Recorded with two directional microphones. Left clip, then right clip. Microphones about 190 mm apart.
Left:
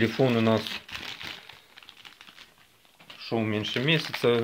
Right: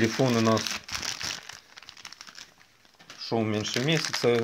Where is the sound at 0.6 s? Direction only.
45° right (ahead or behind).